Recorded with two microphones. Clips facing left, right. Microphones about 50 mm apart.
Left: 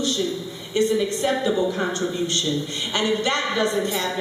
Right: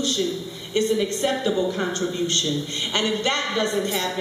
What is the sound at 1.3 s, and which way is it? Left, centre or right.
A man's voice, centre.